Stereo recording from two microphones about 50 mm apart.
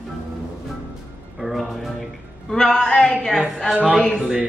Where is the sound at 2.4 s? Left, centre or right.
Centre.